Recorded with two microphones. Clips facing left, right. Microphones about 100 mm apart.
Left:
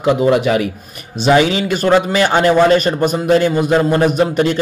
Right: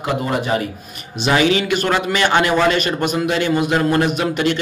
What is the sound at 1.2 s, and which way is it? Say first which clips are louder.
A man's voice: left 3 dB; 35° left (ahead or behind).